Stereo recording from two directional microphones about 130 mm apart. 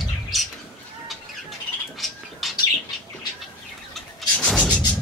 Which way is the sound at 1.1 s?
Centre (ahead or behind).